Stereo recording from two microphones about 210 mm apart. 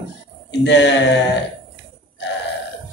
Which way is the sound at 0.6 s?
55° left (ahead or behind).